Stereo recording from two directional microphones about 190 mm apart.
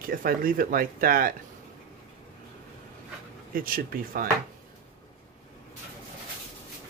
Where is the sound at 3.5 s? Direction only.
50° right (ahead or behind).